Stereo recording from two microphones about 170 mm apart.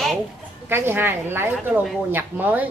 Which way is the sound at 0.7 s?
15° right (ahead or behind).